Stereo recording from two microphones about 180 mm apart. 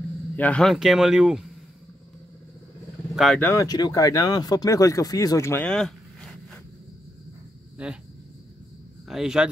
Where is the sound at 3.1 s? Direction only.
Centre (ahead or behind).